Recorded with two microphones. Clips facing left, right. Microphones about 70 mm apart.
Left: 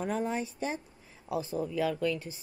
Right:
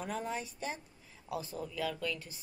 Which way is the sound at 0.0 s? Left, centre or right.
Left.